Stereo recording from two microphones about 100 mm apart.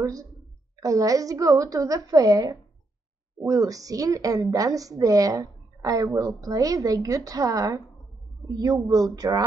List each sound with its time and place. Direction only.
0.0 s a woman's voice: 35° right (ahead or behind)